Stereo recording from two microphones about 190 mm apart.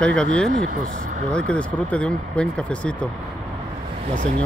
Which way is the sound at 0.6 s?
45° right (ahead or behind).